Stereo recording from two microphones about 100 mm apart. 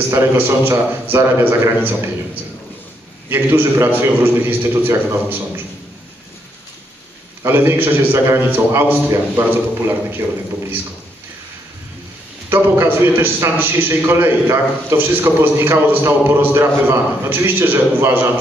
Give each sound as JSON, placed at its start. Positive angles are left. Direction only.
{"t": 0.1, "sound": "a man's voice", "side_deg": -25}
{"t": 3.3, "sound": "a man's voice", "side_deg": -20}
{"t": 7.4, "sound": "a man's voice", "side_deg": -20}
{"t": 12.4, "sound": "a man's voice", "side_deg": -25}